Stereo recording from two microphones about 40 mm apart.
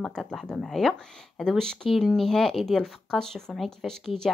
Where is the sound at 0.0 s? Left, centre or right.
Centre.